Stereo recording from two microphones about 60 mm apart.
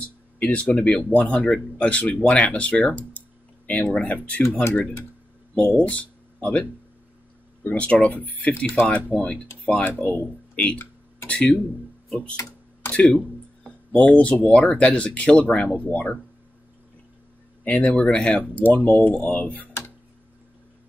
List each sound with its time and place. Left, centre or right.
0.0 s speech: left
5.5 s speech: left
12.9 s speech: left
17.6 s speech: left